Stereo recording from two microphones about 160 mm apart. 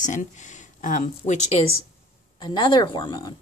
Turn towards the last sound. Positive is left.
turn(degrees=30)  # may be behind; listen again after turning